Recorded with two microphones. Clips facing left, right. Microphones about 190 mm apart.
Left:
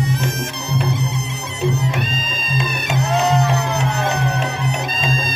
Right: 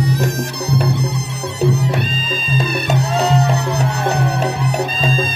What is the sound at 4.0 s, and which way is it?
Music, 35° right (ahead or behind).